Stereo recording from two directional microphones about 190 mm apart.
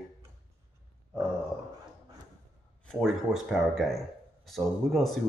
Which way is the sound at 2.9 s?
Centre (ahead or behind).